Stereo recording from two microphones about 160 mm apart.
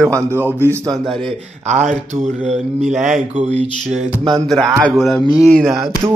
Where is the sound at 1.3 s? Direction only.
45° right (ahead or behind).